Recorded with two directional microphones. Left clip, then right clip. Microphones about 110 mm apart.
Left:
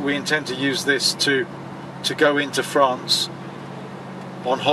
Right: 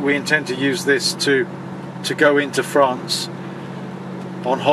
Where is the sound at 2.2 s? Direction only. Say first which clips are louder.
Right 3 dB; 20° left (ahead or behind).